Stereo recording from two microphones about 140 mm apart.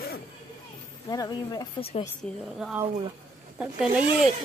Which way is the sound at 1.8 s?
45° left (ahead or behind).